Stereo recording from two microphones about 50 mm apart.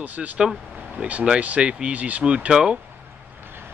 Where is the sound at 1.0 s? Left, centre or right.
Right.